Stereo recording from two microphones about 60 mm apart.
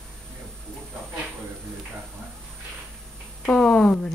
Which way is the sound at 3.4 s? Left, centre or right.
Centre.